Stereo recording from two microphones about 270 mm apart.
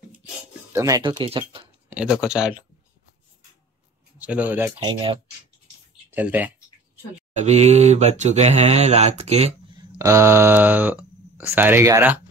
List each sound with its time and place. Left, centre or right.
0.7 s speech: centre
1.9 s speech: centre
4.2 s speech: centre
6.0 s speech: centre
7.3 s speech: right
9.9 s speech: centre